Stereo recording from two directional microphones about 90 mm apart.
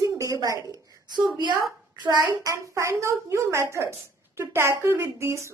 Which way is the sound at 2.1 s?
45° right (ahead or behind).